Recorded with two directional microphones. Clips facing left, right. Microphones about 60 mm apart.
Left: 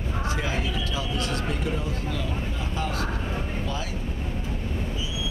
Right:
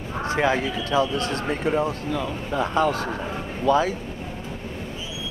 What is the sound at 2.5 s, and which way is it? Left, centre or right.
Speech, right.